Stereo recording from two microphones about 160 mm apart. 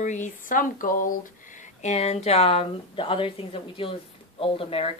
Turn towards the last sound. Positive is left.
turn(degrees=35)  # may be behind; listen again after turning